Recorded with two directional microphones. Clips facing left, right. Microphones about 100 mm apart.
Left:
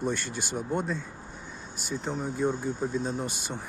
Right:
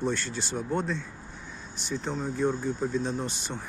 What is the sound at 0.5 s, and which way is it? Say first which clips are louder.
Speech: even; 15° left (ahead or behind).